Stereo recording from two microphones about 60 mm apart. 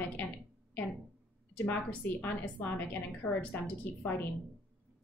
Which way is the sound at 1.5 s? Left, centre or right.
Left.